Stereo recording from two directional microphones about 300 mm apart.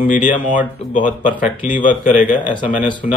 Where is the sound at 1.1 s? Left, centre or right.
Centre.